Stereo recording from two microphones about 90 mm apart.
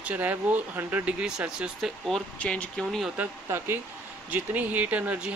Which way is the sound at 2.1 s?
10° left (ahead or behind).